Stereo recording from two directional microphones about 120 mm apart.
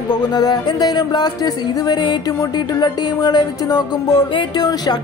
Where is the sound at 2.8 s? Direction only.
35° left (ahead or behind).